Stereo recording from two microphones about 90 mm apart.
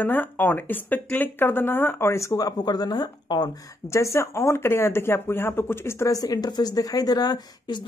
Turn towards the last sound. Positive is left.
turn(degrees=50)  # may be behind; listen again after turning